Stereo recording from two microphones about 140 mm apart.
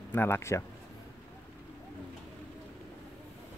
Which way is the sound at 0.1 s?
15° left (ahead or behind).